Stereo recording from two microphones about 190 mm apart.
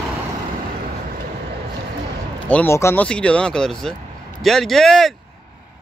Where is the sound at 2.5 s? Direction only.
10° left (ahead or behind).